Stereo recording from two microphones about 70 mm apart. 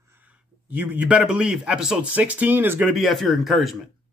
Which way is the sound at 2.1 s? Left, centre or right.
Right.